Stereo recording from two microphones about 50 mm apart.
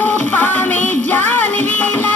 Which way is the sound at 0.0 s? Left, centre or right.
Left.